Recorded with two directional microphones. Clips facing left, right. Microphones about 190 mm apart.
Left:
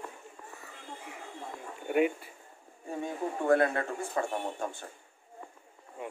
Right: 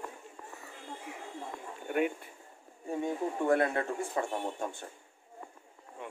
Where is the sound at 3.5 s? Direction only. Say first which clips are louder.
Left 3 dB; 20° right (ahead or behind).